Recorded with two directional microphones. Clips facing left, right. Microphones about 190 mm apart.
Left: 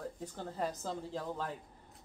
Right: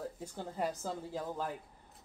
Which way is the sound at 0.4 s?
10° right (ahead or behind).